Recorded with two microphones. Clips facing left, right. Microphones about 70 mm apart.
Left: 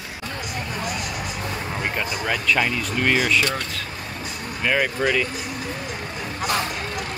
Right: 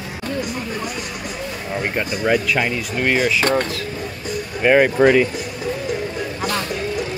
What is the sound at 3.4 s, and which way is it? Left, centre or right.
Speech, right.